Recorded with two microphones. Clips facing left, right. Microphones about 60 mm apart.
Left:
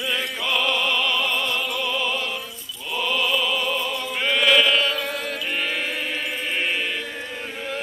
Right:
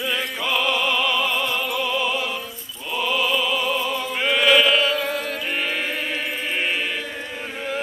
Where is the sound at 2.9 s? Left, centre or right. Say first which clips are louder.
Right 1 dB; centre.